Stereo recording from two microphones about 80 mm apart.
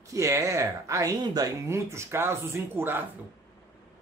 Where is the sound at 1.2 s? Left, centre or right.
Right.